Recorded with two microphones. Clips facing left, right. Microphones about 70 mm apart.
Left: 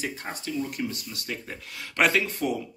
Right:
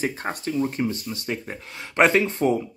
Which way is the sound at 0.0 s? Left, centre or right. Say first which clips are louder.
Right 6 dB; right.